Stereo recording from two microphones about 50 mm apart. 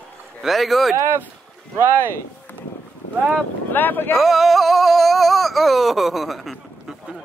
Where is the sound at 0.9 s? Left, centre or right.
Right.